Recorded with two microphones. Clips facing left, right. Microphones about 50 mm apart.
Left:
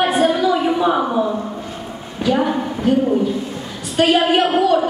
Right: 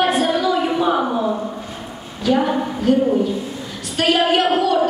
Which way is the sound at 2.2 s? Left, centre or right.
Left.